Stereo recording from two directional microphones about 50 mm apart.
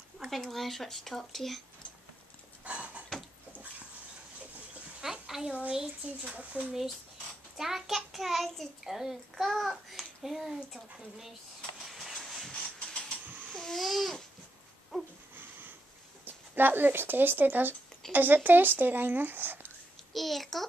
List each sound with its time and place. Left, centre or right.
0.3 s a child's voice: centre
2.6 s a sound: right
5.0 s a sound: centre
6.3 s speech: right
7.5 s a child's voice: centre
11.8 s hiss: centre
12.6 s steam: centre
13.5 s babbling: centre
13.7 s a child's voice: centre
14.9 s a sound: centre
16.3 s speech: right
20.1 s a child's voice: centre